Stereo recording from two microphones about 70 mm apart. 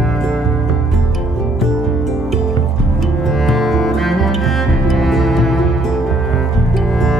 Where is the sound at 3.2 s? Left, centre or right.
Centre.